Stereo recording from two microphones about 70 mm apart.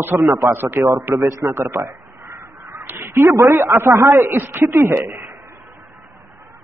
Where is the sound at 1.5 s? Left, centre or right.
Right.